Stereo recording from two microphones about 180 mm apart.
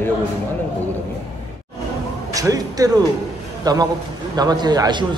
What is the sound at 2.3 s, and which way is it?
A man's voice, 20° right (ahead or behind).